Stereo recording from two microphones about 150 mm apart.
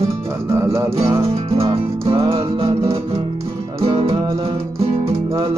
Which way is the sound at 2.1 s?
40° right (ahead or behind).